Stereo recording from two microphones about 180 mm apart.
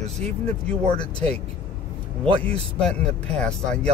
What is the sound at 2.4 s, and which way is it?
Speech, 5° left (ahead or behind).